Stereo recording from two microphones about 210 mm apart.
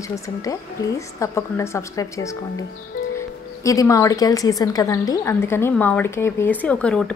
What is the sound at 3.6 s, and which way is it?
A woman's voice, 15° left (ahead or behind).